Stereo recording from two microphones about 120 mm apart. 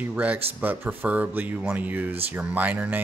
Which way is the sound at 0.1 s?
15° right (ahead or behind).